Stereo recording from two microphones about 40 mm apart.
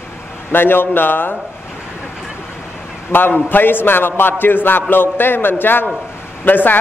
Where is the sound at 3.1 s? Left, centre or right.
Left.